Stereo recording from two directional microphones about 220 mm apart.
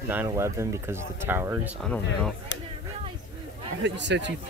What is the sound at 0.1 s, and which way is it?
Speech, 10° right (ahead or behind).